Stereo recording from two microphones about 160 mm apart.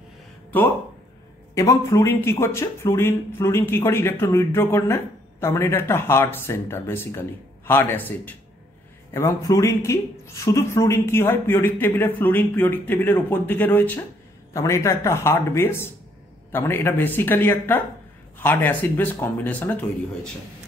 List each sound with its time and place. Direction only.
0.5 s speech: 10° left (ahead or behind)